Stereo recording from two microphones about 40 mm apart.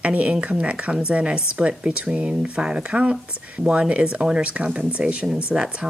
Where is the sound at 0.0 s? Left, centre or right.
Right.